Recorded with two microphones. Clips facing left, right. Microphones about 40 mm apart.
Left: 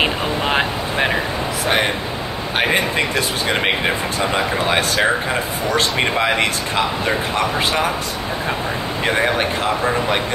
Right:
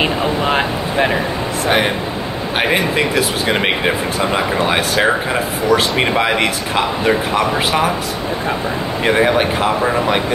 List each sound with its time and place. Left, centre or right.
0.0 s a sound: centre
2.6 s speech: centre
9.0 s speech: centre